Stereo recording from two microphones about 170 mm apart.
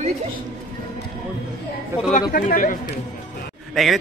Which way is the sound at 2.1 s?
55° left (ahead or behind).